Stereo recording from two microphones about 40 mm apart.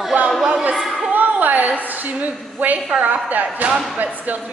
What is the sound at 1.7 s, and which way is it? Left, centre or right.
A woman's voice, right.